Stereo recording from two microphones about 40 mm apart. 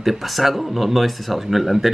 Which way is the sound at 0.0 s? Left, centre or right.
Centre.